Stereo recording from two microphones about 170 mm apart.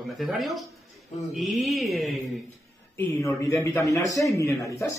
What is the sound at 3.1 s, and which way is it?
Speech, 20° left (ahead or behind).